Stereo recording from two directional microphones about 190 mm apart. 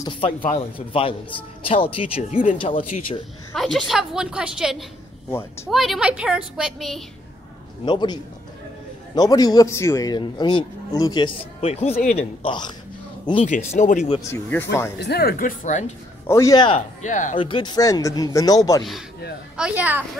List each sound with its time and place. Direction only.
0.0 s a man's voice: 25° left (ahead or behind)
3.5 s a woman's voice: centre (ahead or behind)
7.8 s a man's voice: 25° left (ahead or behind)
12.4 s a man's voice: 25° left (ahead or behind)
13.5 s speech: 40° left (ahead or behind)
14.3 s speech: 10° left (ahead or behind)
15.0 s speech: 60° left (ahead or behind)
16.3 s a man's voice: 15° left (ahead or behind)
17.0 s speech: 40° left (ahead or behind)
17.4 s a man's voice: 25° left (ahead or behind)
19.5 s speech: 5° right (ahead or behind)